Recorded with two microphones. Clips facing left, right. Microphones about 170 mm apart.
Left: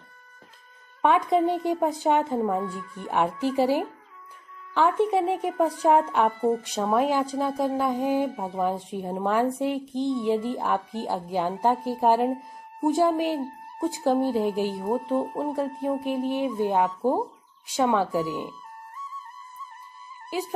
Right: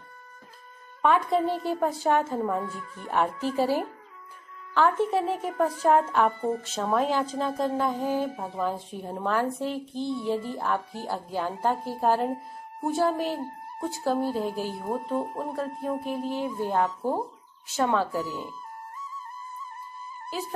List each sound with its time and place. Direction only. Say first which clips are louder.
1.0 s speech: left 2 dB; 15° left (ahead or behind)